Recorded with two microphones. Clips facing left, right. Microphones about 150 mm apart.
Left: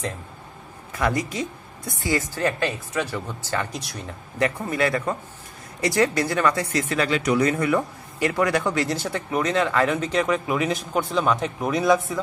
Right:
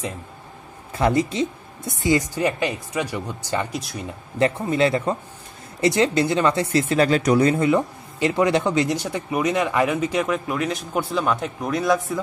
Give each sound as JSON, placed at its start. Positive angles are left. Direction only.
{"t": 0.9, "sound": "speech", "side_deg": -25}
{"t": 3.7, "sound": "speech", "side_deg": -5}
{"t": 4.4, "sound": "a man's voice", "side_deg": -25}